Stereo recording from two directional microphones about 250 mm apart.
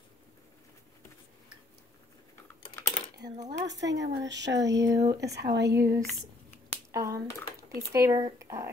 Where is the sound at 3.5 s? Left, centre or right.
Right.